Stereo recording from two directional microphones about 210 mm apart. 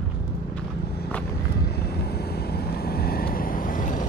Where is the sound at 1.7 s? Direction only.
50° left (ahead or behind).